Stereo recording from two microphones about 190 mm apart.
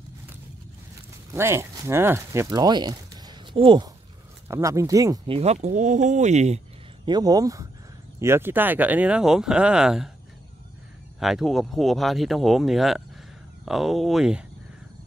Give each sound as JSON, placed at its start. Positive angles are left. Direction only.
{"t": 1.3, "sound": "speech", "side_deg": -15}
{"t": 7.1, "sound": "speech", "side_deg": -20}
{"t": 11.1, "sound": "speech", "side_deg": 0}